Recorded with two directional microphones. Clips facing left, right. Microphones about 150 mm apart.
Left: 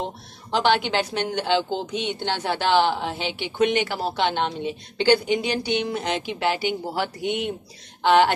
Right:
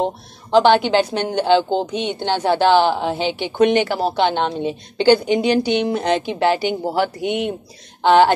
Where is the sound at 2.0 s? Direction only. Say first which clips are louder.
Right 5 dB; 25° right (ahead or behind).